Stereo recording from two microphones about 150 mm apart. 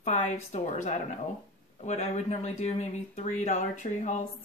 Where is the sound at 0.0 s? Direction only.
50° left (ahead or behind).